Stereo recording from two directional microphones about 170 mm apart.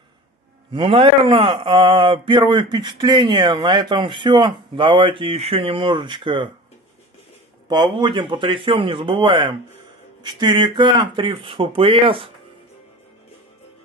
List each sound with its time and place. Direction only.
0.7 s speech: 30° right (ahead or behind)
7.6 s speech: 25° right (ahead or behind)